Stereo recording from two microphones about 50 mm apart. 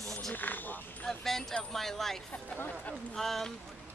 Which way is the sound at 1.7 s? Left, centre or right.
Centre.